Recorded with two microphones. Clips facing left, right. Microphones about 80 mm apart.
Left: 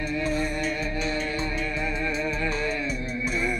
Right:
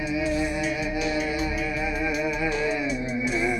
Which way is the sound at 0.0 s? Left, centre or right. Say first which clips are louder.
Right 2 dB; centre.